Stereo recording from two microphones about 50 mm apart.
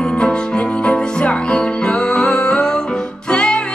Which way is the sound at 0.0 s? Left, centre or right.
Centre.